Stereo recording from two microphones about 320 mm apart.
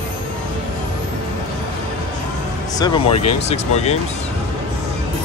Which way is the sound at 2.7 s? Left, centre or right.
Centre.